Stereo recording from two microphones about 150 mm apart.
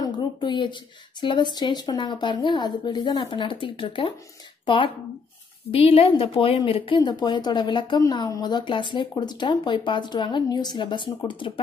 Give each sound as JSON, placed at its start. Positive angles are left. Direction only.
{"t": 0.0, "sound": "speech", "side_deg": 30}